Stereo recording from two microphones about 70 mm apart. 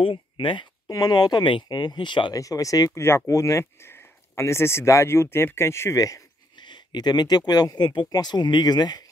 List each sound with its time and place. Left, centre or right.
0.8 s speech: left
2.3 s speech: left
3.0 s speech: left
3.3 s speech: left
3.8 s speech: left
6.5 s speech: left